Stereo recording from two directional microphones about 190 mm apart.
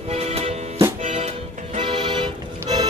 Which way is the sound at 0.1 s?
35° right (ahead or behind).